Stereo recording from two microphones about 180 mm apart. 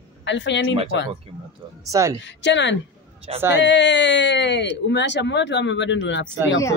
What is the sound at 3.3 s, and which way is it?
Speech, 35° right (ahead or behind).